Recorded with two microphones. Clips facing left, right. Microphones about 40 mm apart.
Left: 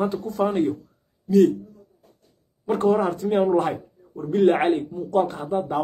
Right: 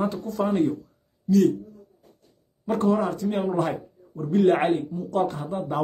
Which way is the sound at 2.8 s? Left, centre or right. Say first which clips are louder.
Left 3 dB; left.